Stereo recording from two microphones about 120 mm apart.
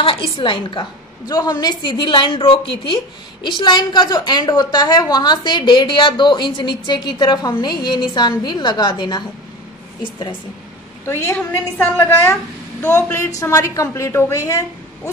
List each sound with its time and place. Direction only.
0.0 s a woman's voice: 45° left (ahead or behind)
11.1 s a woman's voice: 20° left (ahead or behind)